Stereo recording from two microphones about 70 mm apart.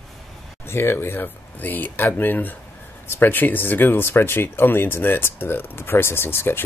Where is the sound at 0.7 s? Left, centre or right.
Left.